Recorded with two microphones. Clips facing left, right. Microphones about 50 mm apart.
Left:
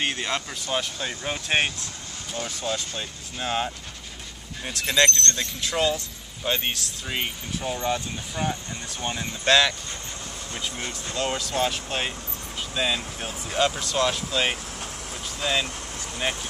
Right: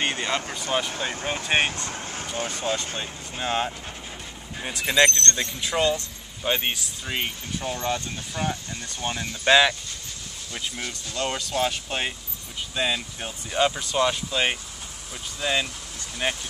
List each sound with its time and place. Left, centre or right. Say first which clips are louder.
0.0 s a sound: right 1 dB; centre
0.9 s speech: right 2 dB; centre
1.9 s vehicle: right 5 dB; right
3.0 s speech: right 1 dB; centre
9.4 s speech: right 2 dB; centre
10.9 s speech: left 1 dB; centre